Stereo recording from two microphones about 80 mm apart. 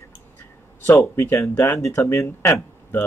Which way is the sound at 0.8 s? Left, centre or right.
Left.